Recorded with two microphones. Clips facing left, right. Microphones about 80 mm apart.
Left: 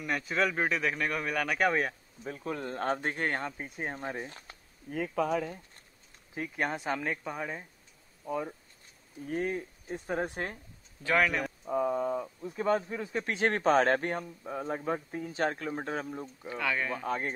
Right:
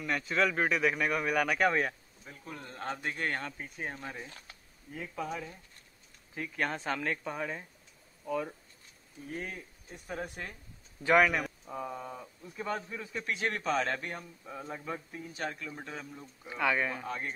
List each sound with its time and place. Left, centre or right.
0.0 s speech: centre
2.2 s speech: left
4.9 s speech: left
6.3 s speech: centre
9.3 s speech: left
9.9 s speech: left
11.1 s speech: centre
11.6 s speech: centre; by 16.3 s left
16.4 s speech: centre
17.0 s speech: left